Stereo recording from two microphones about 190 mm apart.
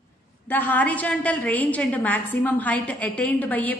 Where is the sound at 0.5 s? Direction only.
10° left (ahead or behind).